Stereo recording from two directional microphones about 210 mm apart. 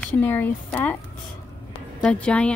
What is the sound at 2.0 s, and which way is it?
Speech, 5° left (ahead or behind).